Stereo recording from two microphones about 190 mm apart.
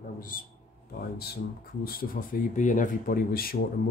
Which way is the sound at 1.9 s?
50° left (ahead or behind).